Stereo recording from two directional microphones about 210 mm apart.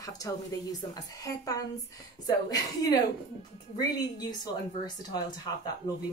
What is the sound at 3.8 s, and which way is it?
Speech, 20° left (ahead or behind).